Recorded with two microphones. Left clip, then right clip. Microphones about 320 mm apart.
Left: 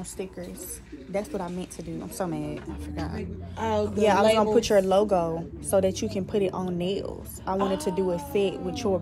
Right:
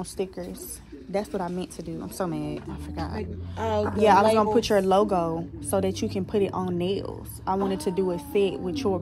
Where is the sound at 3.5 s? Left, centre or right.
Right.